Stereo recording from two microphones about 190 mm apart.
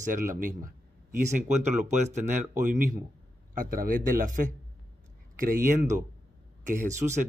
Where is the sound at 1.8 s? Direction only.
40° right (ahead or behind).